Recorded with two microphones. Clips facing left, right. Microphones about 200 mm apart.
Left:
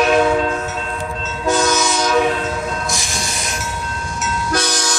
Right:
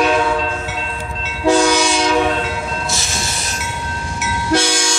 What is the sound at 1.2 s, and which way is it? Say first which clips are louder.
Train: right 4 dB; 30° right (ahead or behind).